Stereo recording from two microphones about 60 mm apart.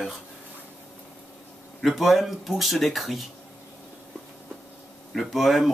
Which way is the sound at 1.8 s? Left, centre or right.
Centre.